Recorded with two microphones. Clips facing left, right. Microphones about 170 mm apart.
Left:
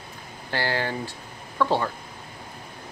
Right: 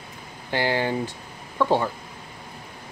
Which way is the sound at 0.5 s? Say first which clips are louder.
Right 4 dB; 15° right (ahead or behind).